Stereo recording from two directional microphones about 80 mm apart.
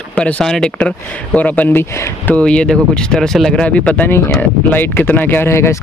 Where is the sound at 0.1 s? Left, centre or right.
Centre.